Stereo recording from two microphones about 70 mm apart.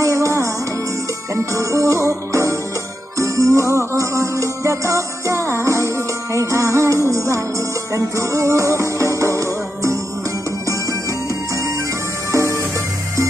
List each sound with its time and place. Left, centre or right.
0.0 s music: right
12.3 s music: right